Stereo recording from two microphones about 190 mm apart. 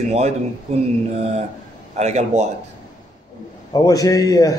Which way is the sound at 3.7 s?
20° left (ahead or behind).